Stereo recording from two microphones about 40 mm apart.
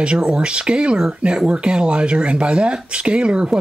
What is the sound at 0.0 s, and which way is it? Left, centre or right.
Speech, right.